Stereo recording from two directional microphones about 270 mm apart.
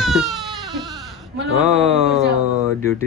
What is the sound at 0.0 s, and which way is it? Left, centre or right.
Goat, centre.